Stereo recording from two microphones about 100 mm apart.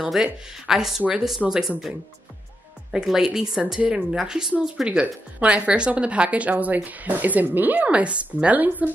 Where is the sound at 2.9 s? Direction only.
5° right (ahead or behind).